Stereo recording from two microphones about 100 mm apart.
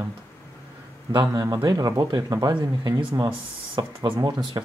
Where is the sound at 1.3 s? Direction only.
35° right (ahead or behind).